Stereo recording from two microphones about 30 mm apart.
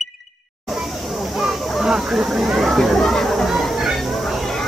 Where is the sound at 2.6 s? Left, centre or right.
Centre.